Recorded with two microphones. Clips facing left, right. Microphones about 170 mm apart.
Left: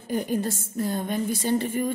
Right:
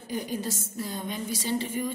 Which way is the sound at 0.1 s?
50° left (ahead or behind).